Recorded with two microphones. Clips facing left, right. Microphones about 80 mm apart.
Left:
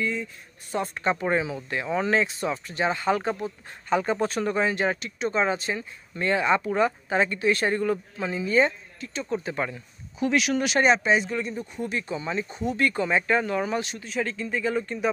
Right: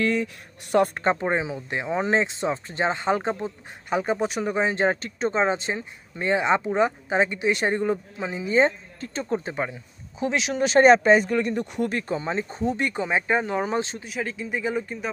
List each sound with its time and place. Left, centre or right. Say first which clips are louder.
0.0 s speech: right 5 dB; right
1.1 s speech: even; right
9.0 s speech: right 2 dB; right
10.9 s speech: right 6 dB; right
11.9 s speech: right 2 dB; right
12.8 s speech: left 1 dB; centre
14.0 s speech: left 1 dB; centre